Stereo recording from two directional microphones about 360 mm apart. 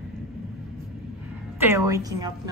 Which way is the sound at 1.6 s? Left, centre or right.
Centre.